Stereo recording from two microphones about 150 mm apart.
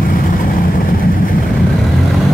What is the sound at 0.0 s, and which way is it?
Vehicle, 65° left (ahead or behind).